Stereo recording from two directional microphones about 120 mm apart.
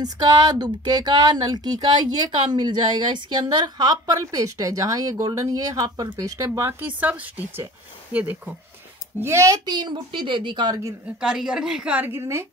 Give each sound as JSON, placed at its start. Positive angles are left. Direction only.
{"t": 0.0, "sound": "speech", "side_deg": -35}
{"t": 7.0, "sound": "a woman's voice", "side_deg": -15}
{"t": 9.2, "sound": "speech", "side_deg": -25}
{"t": 11.1, "sound": "a woman's voice", "side_deg": -5}